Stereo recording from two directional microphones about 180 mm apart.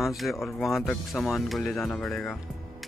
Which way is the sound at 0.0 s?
Centre (ahead or behind).